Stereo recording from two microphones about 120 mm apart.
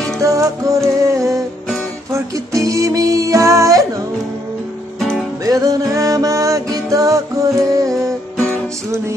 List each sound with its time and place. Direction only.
0.2 s music: 25° right (ahead or behind)
5.4 s music: 30° right (ahead or behind)